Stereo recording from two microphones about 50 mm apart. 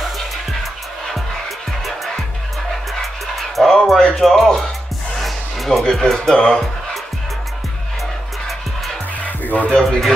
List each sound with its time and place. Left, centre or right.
3.5 s music: centre
6.3 s speech: centre
9.4 s music: left
9.7 s speech: centre